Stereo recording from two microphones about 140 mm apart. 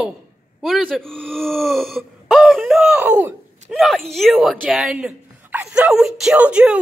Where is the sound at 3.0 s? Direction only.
15° right (ahead or behind).